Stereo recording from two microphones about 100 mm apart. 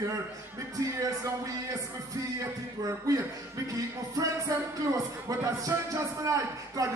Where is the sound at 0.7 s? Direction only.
35° right (ahead or behind).